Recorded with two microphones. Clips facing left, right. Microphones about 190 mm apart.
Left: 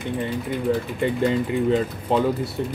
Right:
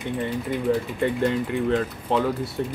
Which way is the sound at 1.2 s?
10° left (ahead or behind).